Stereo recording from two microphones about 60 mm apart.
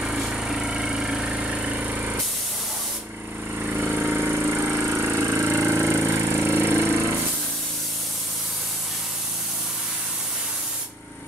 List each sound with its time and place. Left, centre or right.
0.0 s vehicle: centre; by 2.1 s right
3.5 s a sound: right
4.3 s vehicle: right